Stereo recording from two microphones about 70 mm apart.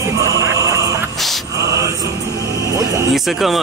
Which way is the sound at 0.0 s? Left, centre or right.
Right.